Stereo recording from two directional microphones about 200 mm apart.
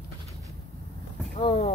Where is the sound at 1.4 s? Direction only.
30° left (ahead or behind).